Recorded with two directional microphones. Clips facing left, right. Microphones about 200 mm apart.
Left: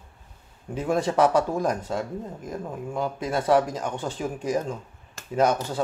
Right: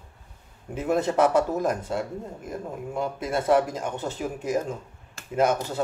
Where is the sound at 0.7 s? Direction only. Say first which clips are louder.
Even; 5° right (ahead or behind).